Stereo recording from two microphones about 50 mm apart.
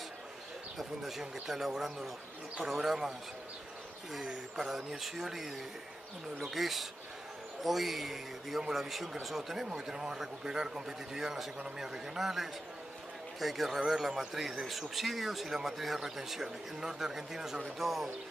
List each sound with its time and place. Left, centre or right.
0.7 s a man's voice: centre